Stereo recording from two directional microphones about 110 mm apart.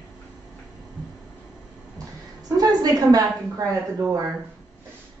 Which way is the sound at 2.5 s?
35° right (ahead or behind).